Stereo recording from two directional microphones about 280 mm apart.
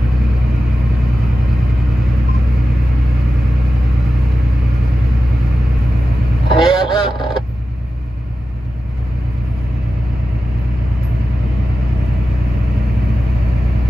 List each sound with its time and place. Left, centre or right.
6.5 s fowl: centre